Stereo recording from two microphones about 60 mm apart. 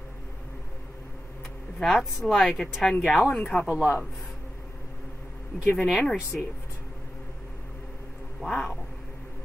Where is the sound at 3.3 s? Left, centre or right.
Centre.